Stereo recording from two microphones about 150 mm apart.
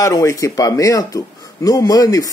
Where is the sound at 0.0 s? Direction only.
20° left (ahead or behind).